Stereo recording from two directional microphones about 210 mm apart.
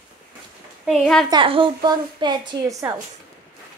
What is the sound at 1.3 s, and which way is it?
A woman's voice, 25° right (ahead or behind).